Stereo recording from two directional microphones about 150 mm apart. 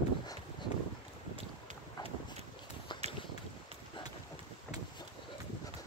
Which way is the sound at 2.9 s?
30° left (ahead or behind).